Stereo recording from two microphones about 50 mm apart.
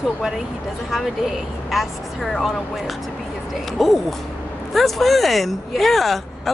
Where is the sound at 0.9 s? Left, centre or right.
Centre.